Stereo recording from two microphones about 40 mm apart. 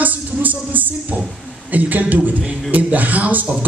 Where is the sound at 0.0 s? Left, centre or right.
Right.